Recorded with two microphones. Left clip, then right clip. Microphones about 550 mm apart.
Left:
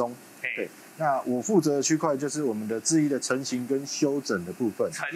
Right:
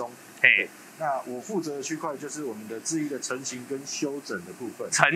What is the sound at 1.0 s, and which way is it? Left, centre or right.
Speech, left.